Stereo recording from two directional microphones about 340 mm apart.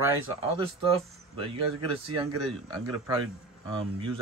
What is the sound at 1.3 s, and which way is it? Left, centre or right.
A man's voice, centre.